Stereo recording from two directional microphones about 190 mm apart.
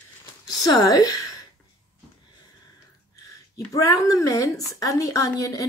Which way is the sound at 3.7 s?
20° left (ahead or behind).